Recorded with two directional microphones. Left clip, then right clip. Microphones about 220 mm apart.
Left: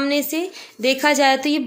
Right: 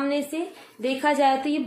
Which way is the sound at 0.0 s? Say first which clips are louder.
Left 5 dB; 45° left (ahead or behind).